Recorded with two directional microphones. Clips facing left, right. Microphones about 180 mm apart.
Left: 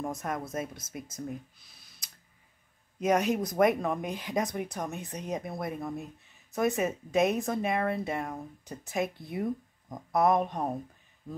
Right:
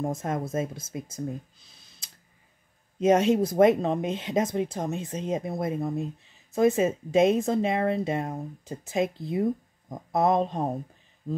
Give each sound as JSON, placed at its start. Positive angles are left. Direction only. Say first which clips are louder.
{"t": 0.0, "sound": "speech", "louder": "right 5 dB", "side_deg": -25}